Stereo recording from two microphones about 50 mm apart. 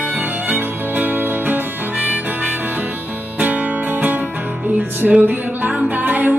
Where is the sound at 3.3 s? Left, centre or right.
Right.